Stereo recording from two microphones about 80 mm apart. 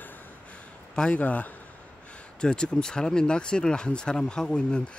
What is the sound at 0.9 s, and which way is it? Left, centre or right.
Speech, centre.